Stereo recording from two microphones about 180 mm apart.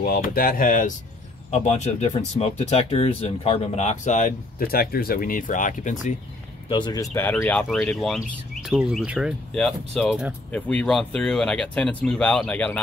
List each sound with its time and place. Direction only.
0.0 s speech: 55° left (ahead or behind)
6.7 s speech: 25° left (ahead or behind); by 12.8 s 5° left (ahead or behind)